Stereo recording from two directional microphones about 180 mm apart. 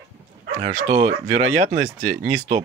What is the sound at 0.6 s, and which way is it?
Speech, 40° right (ahead or behind).